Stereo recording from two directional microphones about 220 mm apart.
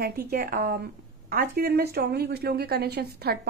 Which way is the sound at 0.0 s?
45° right (ahead or behind).